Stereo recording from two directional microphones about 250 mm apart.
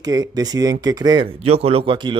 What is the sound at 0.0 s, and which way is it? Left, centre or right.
Speech, centre.